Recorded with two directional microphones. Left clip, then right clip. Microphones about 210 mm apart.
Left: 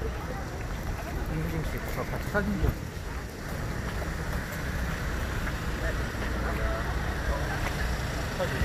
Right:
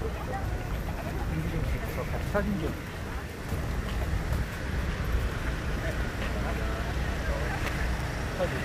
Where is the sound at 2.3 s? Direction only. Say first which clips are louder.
Even; 25° left (ahead or behind).